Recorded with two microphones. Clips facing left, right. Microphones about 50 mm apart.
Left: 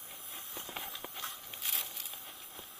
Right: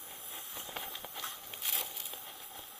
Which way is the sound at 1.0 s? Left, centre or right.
Left.